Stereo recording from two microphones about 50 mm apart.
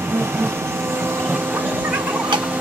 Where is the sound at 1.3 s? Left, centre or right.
Right.